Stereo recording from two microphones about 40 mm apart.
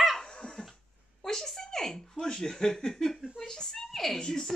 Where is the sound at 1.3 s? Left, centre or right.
Centre.